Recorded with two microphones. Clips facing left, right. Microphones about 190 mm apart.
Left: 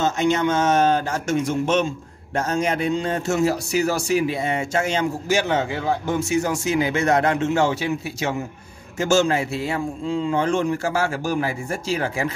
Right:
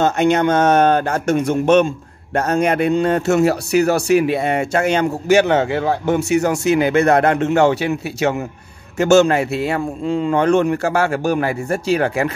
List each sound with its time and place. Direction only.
0.0 s a man's voice: 60° right (ahead or behind)